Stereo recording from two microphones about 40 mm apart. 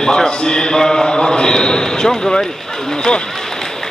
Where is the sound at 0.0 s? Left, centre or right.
Centre.